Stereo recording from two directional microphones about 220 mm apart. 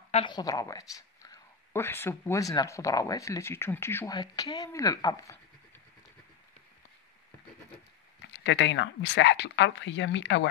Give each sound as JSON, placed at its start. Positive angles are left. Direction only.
{"t": 0.1, "sound": "speech", "side_deg": 20}
{"t": 8.3, "sound": "speech", "side_deg": 55}